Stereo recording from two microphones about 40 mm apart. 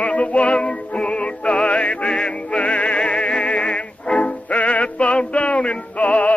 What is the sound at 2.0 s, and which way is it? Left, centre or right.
Music, left.